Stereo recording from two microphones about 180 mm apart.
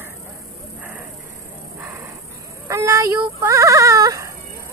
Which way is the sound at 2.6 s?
15° right (ahead or behind).